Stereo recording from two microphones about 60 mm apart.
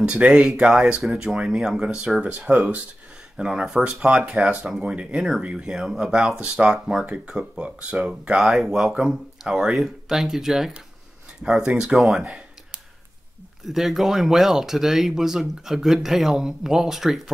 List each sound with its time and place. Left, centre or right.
0.0 s speech: centre
13.7 s speech: centre